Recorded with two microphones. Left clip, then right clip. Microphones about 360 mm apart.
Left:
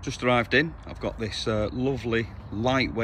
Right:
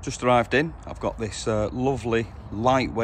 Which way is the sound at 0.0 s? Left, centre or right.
Centre.